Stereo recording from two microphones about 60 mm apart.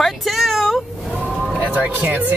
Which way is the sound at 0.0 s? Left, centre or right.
Centre.